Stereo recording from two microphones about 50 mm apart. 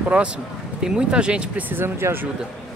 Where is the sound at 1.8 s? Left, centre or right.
Right.